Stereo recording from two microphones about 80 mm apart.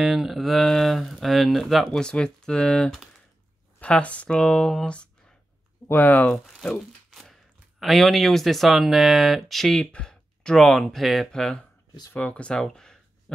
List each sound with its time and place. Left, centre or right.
0.0 s speech: centre; by 6.3 s left
6.3 s crumpling: centre
7.8 s speech: centre
12.1 s speech: centre